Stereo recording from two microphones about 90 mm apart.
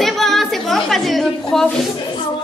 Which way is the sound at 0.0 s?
5° left (ahead or behind).